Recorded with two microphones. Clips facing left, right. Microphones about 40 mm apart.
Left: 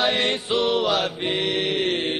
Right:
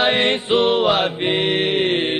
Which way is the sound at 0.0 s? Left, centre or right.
Right.